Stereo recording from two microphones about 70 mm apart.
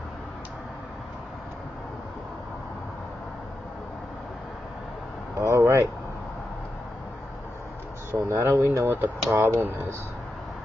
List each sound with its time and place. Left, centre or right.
5.4 s vehicle: right
8.1 s speech: right